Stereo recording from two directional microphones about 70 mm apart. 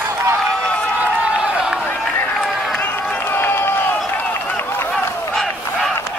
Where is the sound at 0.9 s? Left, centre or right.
Centre.